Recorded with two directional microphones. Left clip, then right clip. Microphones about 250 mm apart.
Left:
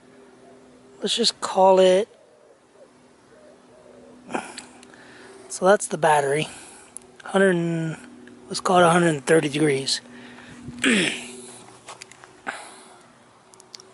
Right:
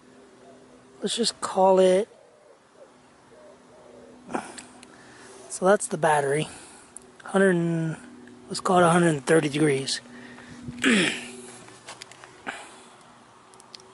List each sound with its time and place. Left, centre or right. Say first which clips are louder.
1.0 s speech: left 4 dB; centre
4.3 s sniff: left 2 dB; centre
5.5 s speech: left 3 dB; centre
11.8 s sniff: left 1 dB; centre